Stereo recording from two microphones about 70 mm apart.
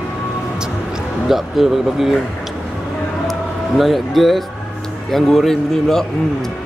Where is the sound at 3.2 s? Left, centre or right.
Centre.